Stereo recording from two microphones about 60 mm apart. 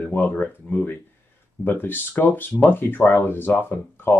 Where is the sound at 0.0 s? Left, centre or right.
Left.